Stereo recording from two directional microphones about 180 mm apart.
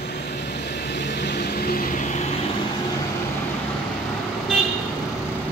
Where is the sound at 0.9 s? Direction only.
70° left (ahead or behind); by 2.0 s 55° left (ahead or behind).